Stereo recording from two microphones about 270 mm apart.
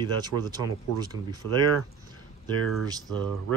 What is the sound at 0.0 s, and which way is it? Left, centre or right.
Speech, centre.